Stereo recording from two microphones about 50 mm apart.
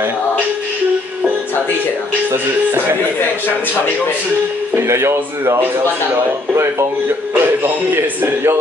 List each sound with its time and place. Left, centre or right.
2.3 s speech: right
4.7 s speech: right
6.5 s speech: right
7.3 s a man's voice: right